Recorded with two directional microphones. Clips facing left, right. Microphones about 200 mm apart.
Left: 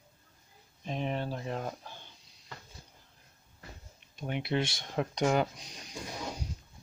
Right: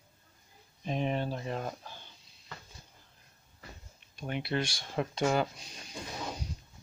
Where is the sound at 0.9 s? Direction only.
5° right (ahead or behind).